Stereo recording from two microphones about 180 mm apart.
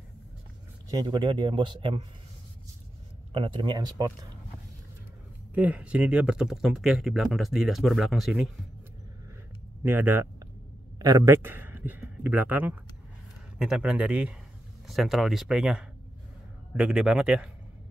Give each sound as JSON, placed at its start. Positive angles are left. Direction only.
{"t": 0.8, "sound": "speech", "side_deg": -20}
{"t": 3.3, "sound": "speech", "side_deg": -25}
{"t": 5.5, "sound": "speech", "side_deg": -10}
{"t": 9.9, "sound": "a man's voice", "side_deg": -10}